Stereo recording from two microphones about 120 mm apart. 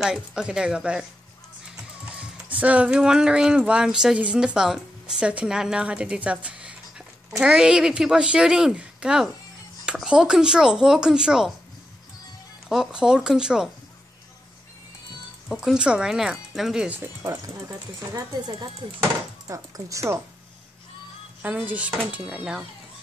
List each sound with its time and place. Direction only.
0.0 s speech: 5° right (ahead or behind)
2.1 s speech: 10° right (ahead or behind)
12.6 s speech: 5° right (ahead or behind)
15.4 s speech: 5° right (ahead or behind); by 20.2 s 25° right (ahead or behind)
21.4 s speech: 15° right (ahead or behind)